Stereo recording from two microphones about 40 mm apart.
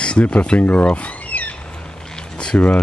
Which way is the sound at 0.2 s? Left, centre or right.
Left.